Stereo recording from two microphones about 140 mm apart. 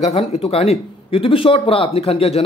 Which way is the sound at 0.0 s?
50° left (ahead or behind).